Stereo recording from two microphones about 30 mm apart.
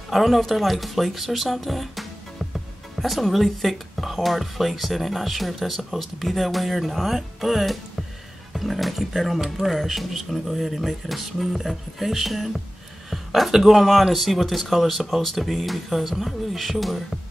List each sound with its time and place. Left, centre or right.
0.1 s speech: centre
13.1 s a sound: centre
13.5 s speech: centre
15.2 s speech: centre